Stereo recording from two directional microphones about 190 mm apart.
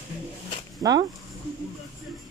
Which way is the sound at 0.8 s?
20° right (ahead or behind).